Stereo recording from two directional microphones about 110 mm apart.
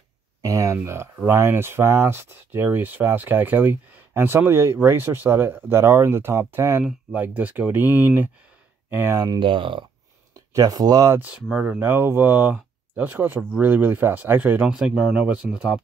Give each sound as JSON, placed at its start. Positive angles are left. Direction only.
{"t": 0.4, "sound": "a sound", "side_deg": -30}
{"t": 0.8, "sound": "speech", "side_deg": -25}
{"t": 7.8, "sound": "speech", "side_deg": 30}
{"t": 8.9, "sound": "speech", "side_deg": -20}
{"t": 9.4, "sound": "speech", "side_deg": -50}
{"t": 10.3, "sound": "speech", "side_deg": -35}
{"t": 11.1, "sound": "speech", "side_deg": -15}
{"t": 11.8, "sound": "speech", "side_deg": -20}